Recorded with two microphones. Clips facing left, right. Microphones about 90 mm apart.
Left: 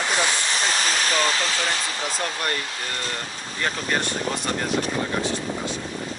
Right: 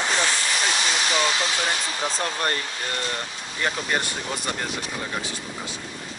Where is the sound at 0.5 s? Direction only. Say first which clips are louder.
Left 1 dB; 40° left (ahead or behind).